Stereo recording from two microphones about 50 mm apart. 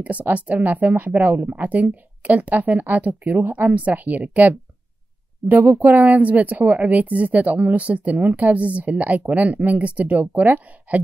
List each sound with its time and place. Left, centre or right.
0.0 s speech: right